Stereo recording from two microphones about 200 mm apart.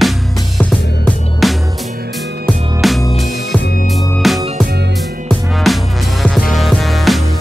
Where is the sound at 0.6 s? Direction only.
5° left (ahead or behind).